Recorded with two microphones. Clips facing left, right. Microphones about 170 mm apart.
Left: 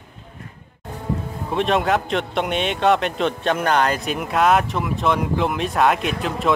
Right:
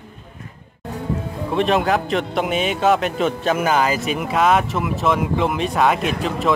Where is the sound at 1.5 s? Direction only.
Centre (ahead or behind).